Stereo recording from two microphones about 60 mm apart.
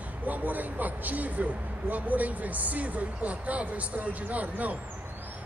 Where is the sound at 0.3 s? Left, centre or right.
Right.